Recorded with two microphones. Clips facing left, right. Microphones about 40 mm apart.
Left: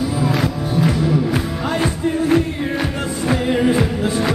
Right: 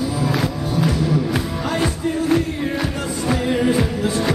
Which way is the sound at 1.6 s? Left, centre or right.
Centre.